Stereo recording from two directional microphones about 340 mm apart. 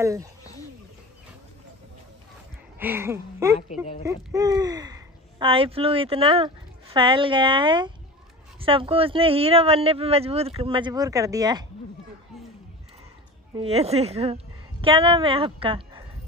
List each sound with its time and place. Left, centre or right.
0.0 s a woman's voice: centre
2.8 s a woman's voice: centre
13.6 s a woman's voice: centre